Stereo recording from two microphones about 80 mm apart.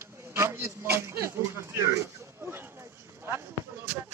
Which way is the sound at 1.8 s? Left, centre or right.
Right.